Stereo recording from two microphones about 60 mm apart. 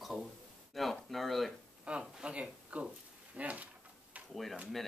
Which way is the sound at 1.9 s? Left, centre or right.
Centre.